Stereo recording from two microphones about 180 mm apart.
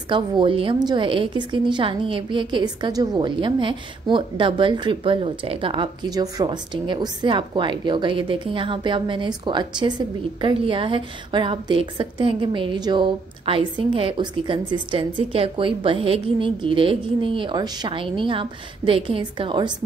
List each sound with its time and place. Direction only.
0.1 s a woman's voice: 30° right (ahead or behind)